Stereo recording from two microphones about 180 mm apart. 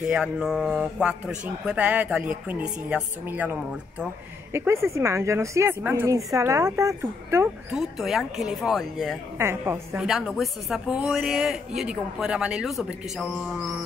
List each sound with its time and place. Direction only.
0.0 s a woman's voice: 5° right (ahead or behind)
7.7 s speech: centre (ahead or behind)
9.4 s a woman's voice: 15° right (ahead or behind)
10.0 s speech: centre (ahead or behind)